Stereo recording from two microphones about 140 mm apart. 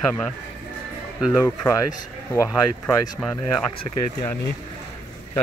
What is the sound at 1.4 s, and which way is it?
Speech, 20° left (ahead or behind).